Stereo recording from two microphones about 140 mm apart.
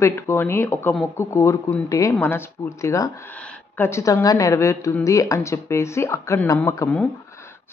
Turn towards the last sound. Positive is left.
turn(degrees=20)  # may be behind; listen again after turning